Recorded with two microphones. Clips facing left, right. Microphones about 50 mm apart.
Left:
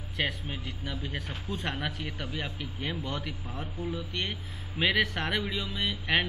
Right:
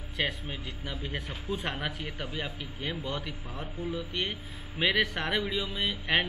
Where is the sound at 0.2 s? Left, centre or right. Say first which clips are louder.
Even; centre.